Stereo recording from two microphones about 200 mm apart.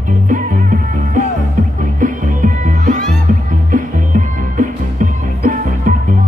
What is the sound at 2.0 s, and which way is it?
Music, 40° right (ahead or behind).